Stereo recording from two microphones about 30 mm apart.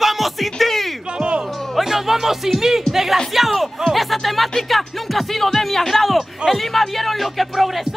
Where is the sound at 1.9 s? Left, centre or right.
Centre.